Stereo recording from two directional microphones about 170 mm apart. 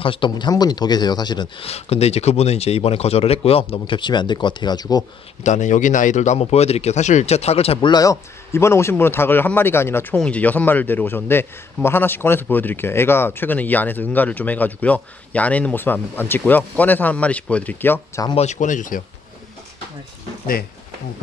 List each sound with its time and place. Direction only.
0.0 s speech: 30° left (ahead or behind)
5.4 s a man's voice: 45° left (ahead or behind); by 18.2 s 10° left (ahead or behind)
18.3 s speech: 40° left (ahead or behind)